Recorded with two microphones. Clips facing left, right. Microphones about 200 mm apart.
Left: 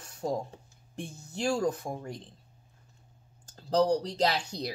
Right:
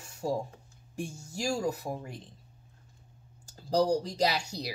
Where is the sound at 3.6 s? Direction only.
10° right (ahead or behind).